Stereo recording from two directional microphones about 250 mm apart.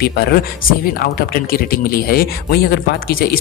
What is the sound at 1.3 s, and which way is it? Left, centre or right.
Speech, left.